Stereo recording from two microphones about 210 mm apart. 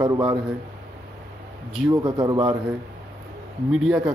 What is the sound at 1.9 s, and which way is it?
Speech, 20° right (ahead or behind).